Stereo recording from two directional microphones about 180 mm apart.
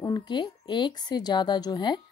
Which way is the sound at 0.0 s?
25° left (ahead or behind).